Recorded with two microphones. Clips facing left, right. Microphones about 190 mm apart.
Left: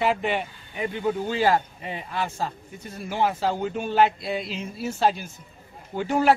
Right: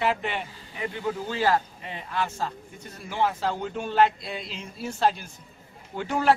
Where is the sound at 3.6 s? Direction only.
10° left (ahead or behind).